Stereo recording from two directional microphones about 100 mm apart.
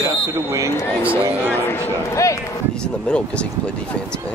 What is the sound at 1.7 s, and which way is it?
Speech, 30° left (ahead or behind).